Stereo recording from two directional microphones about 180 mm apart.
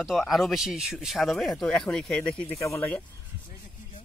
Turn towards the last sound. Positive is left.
turn(degrees=10)  # may be behind; listen again after turning